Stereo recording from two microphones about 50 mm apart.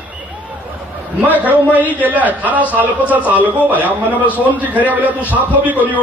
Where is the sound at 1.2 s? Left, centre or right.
Right.